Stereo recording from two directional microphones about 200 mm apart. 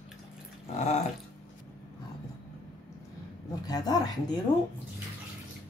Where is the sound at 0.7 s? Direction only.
35° left (ahead or behind).